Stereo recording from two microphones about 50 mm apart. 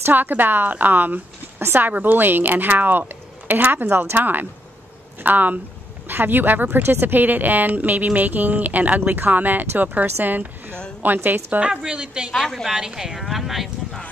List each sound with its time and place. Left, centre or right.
0.0 s speech: right
11.6 s a woman's voice: centre
12.3 s a woman's voice: centre
12.6 s speech: centre